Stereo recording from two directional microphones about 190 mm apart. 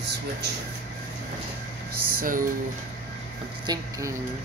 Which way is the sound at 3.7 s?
20° right (ahead or behind).